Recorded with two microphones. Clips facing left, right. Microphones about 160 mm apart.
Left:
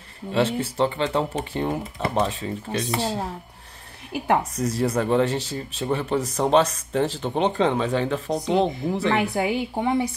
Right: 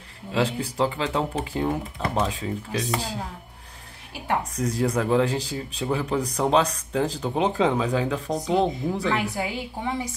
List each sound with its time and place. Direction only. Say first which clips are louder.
0.3 s speech: left 3 dB; 5° left (ahead or behind)
4.6 s speech: left 1 dB; centre (ahead or behind)
9.2 s a woman's voice: left 5 dB; 60° left (ahead or behind)